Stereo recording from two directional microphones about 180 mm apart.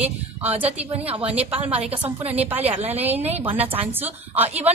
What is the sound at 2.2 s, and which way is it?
Speech, 35° right (ahead or behind).